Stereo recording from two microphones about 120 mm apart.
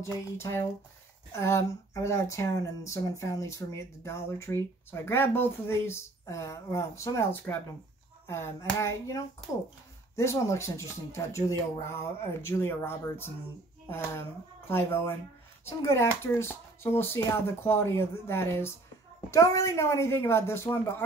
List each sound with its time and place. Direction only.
0.4 s speech: 20° left (ahead or behind)